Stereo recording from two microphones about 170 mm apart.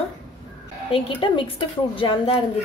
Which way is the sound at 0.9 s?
30° left (ahead or behind).